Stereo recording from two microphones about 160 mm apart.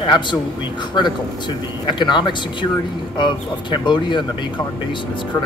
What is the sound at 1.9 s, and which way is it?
Speech, 30° left (ahead or behind).